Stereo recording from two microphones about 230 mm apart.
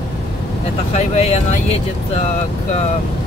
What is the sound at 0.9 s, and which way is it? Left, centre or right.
Speech, left.